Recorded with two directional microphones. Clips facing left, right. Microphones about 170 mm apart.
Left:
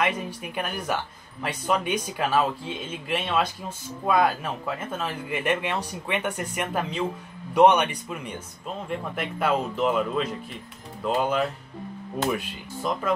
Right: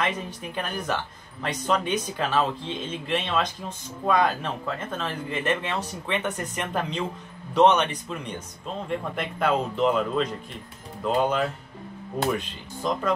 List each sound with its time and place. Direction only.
0.0 s speech: 10° left (ahead or behind)